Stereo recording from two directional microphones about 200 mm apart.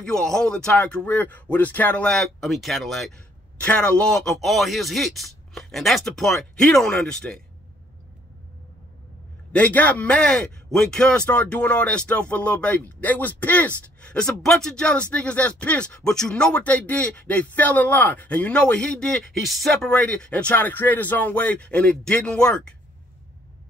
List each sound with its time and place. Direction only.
0.0 s a man's voice: 5° left (ahead or behind)
9.5 s a man's voice: 5° left (ahead or behind)